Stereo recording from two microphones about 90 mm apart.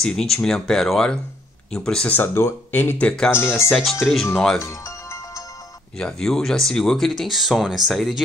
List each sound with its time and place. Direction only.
0.0 s speech: 5° left (ahead or behind)
2.1 s speech: 25° left (ahead or behind)
4.0 s speech: centre (ahead or behind)
4.6 s music: 35° left (ahead or behind)
5.9 s speech: 5° left (ahead or behind)